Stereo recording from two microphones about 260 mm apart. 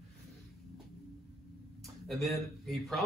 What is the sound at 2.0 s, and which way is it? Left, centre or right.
Speech, centre.